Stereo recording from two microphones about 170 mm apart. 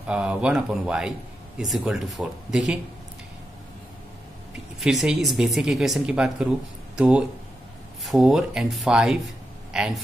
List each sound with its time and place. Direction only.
0.0 s speech: 5° right (ahead or behind)
4.7 s speech: centre (ahead or behind)
9.7 s a sound: 5° right (ahead or behind)